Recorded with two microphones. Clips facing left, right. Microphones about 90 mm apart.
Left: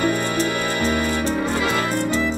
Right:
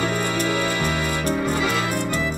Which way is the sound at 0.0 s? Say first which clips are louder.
Left 2 dB; 45° left (ahead or behind).